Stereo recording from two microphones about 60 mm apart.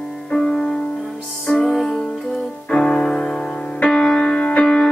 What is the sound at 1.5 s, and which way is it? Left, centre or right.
Music, centre.